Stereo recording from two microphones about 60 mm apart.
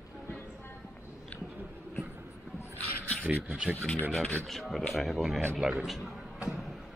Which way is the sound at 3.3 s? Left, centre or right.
Centre.